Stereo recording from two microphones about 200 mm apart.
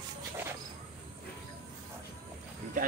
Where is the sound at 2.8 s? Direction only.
40° right (ahead or behind).